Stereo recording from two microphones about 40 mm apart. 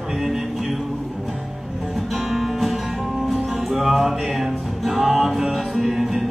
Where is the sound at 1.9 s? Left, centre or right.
Centre.